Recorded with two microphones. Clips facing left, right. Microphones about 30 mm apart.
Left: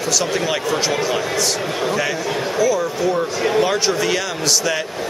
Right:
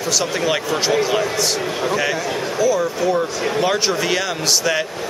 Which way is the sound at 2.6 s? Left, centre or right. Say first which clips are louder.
Right 1 dB; centre.